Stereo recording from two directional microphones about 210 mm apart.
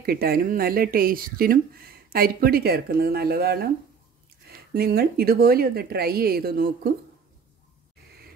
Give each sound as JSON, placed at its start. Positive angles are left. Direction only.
{"t": 0.0, "sound": "speech", "side_deg": -45}